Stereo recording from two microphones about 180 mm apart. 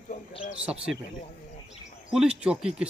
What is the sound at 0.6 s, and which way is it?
Speech, 5° right (ahead or behind).